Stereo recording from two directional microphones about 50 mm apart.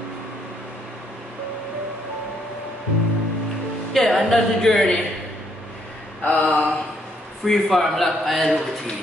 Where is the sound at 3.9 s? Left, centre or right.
Centre.